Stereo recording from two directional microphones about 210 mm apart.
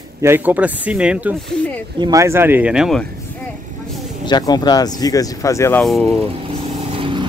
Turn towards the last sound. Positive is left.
turn(degrees=-25)  # may be behind; listen again after turning